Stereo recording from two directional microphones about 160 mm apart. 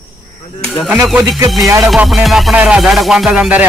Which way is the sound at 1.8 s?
5° right (ahead or behind).